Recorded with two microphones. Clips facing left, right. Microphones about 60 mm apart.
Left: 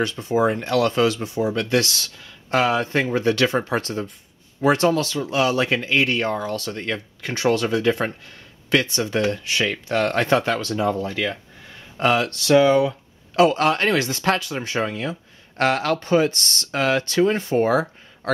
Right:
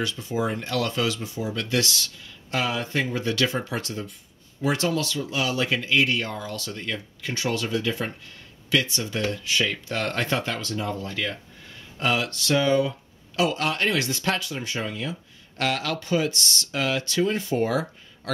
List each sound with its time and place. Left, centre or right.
0.0 s speech: left
9.7 s speech: left
10.0 s speech: left
11.1 s speech: centre
12.0 s speech: left
12.6 s speech: left
13.4 s speech: left
13.8 s speech: left